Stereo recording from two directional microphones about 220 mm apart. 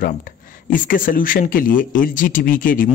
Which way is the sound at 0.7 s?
40° left (ahead or behind).